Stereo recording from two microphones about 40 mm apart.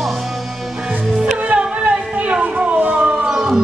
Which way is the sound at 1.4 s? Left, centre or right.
Right.